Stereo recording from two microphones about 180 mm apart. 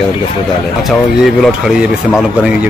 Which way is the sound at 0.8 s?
Centre (ahead or behind).